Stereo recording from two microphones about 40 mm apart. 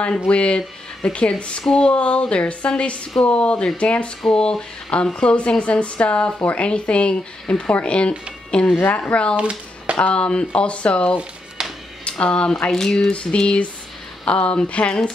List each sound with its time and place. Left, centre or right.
0.3 s speech: left
8.6 s speech: left
8.9 s speech: left
9.4 s speech: right
9.9 s speech: left
12.7 s speech: centre
13.1 s speech: left